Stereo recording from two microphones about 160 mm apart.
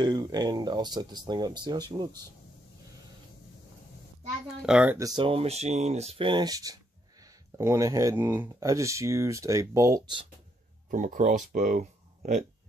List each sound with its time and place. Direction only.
0.0 s speech: 25° right (ahead or behind)
4.6 s speech: 5° right (ahead or behind)
4.9 s speech: 25° right (ahead or behind)
10.9 s speech: 55° right (ahead or behind)